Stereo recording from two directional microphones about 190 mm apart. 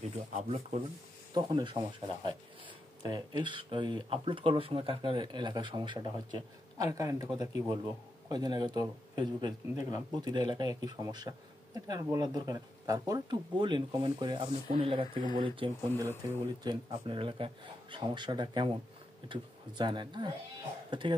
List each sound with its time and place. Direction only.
0.3 s speech: 35° right (ahead or behind)
1.3 s speech: 25° right (ahead or behind)